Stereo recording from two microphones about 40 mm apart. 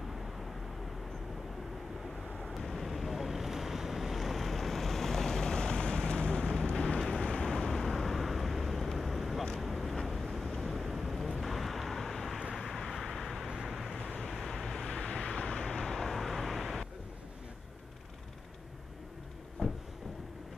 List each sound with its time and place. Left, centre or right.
2.3 s waves: centre; by 6.4 s left
7.2 s vehicle: centre
7.5 s vehicle: centre
14.5 s vehicle: centre
15.0 s vehicle: left
15.7 s vehicle: centre
19.6 s a sound: left